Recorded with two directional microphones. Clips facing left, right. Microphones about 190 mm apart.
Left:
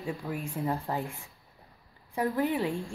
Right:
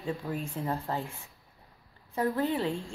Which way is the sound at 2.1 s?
15° left (ahead or behind).